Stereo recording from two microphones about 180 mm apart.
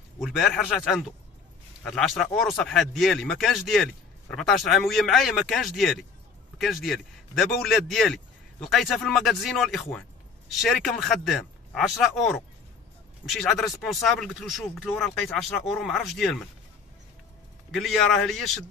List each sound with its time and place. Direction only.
0.2 s speech: centre (ahead or behind)
17.6 s speech: centre (ahead or behind)